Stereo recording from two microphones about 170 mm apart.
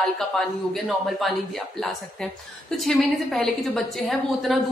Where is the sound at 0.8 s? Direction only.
Centre (ahead or behind).